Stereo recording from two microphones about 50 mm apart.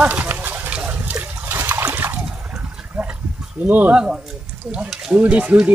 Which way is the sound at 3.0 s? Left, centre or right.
Centre.